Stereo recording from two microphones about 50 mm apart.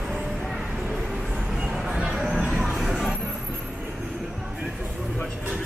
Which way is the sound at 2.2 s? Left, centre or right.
Centre.